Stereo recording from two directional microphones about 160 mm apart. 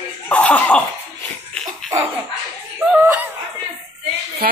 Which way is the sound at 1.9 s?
20° right (ahead or behind).